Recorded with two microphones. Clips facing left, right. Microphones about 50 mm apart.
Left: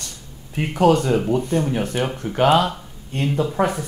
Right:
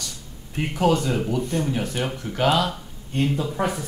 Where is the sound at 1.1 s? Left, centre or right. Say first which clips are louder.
Left 5 dB; left.